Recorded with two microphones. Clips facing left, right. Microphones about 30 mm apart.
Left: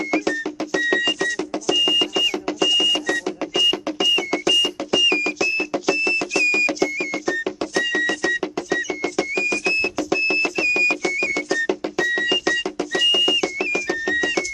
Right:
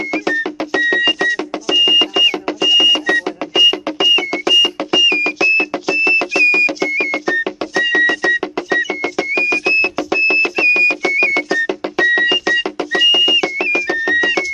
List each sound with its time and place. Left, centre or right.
0.1 s music: right